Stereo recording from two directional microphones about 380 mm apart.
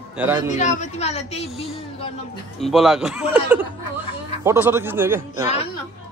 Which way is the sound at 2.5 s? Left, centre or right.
Centre.